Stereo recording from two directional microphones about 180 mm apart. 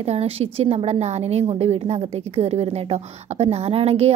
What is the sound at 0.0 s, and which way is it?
A woman's voice, 35° right (ahead or behind).